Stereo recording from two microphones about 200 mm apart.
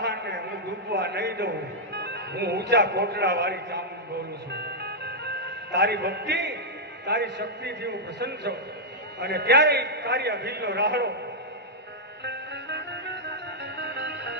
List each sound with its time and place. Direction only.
0.0 s a sound: 55° right (ahead or behind)
0.9 s a man's voice: 55° right (ahead or behind)
2.0 s music: 60° right (ahead or behind)
2.7 s a man's voice: 60° right (ahead or behind)
4.6 s music: 55° right (ahead or behind)
7.1 s a man's voice: 55° right (ahead or behind)
12.3 s music: 60° right (ahead or behind)